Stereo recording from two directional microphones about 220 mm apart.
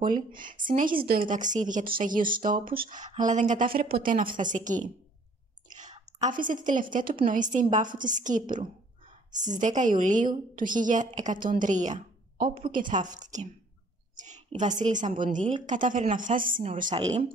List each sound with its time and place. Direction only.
0.0 s a woman's voice: 40° right (ahead or behind)
14.1 s a sound: 35° right (ahead or behind)
14.6 s a woman's voice: 35° right (ahead or behind)
16.9 s speech: 25° right (ahead or behind)